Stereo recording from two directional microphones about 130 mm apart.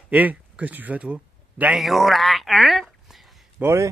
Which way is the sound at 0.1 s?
10° right (ahead or behind).